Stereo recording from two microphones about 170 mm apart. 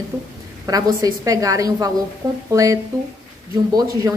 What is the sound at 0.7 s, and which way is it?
A woman's voice, 20° right (ahead or behind).